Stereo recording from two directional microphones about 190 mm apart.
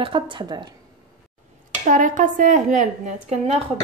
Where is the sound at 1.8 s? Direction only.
45° right (ahead or behind).